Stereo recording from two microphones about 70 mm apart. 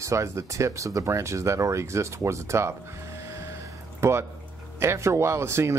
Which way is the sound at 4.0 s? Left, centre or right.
Right.